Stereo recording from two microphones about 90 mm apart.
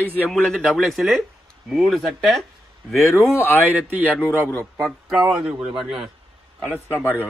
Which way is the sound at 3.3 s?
30° left (ahead or behind).